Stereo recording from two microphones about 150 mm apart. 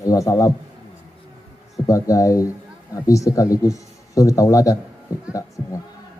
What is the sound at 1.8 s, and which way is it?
A man's voice, 20° left (ahead or behind).